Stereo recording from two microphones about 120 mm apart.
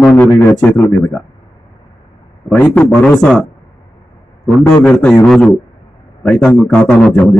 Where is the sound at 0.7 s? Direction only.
25° left (ahead or behind).